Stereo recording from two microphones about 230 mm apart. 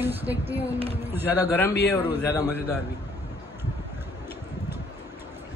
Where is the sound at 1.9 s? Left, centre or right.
Centre.